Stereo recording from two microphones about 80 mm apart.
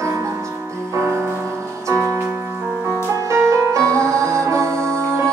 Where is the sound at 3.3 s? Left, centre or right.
Right.